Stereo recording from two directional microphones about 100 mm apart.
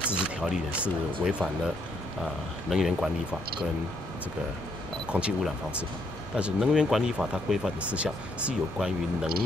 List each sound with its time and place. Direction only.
0.0 s speech: 10° right (ahead or behind)
1.4 s speech: 5° left (ahead or behind)
2.7 s speech: 5° right (ahead or behind)
5.1 s speech: 10° right (ahead or behind)